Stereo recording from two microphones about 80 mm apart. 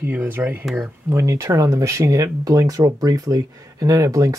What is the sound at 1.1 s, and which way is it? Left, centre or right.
Speech, right.